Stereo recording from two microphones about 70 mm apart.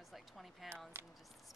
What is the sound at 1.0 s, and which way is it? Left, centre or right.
Speech, right.